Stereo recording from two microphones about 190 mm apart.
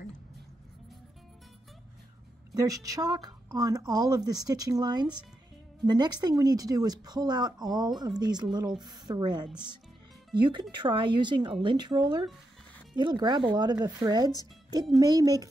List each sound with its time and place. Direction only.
2.5 s speech: 20° right (ahead or behind)